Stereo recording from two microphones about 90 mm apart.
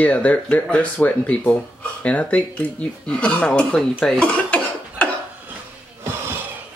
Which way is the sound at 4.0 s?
10° left (ahead or behind).